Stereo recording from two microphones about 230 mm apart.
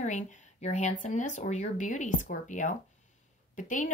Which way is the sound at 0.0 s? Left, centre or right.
Left.